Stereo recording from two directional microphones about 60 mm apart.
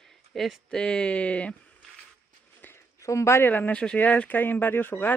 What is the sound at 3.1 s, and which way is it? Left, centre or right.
Speech, left.